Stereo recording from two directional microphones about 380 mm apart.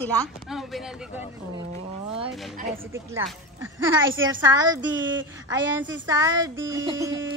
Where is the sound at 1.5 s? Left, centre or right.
Centre.